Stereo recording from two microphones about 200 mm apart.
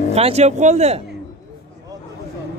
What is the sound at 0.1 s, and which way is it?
Speech, 30° right (ahead or behind).